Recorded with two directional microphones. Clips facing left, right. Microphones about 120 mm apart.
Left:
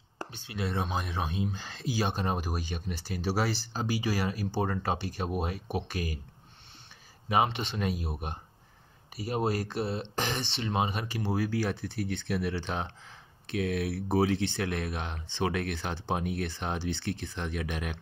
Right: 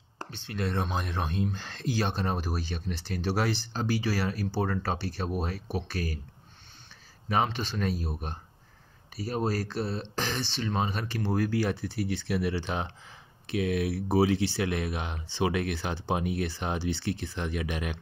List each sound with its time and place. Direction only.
0.3 s speech: 10° left (ahead or behind)
7.2 s speech: 15° left (ahead or behind)
9.1 s speech: 20° left (ahead or behind); by 17.9 s centre (ahead or behind)